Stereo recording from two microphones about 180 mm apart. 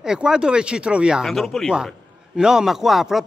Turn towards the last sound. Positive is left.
turn(degrees=0)  # may be behind; listen again after turning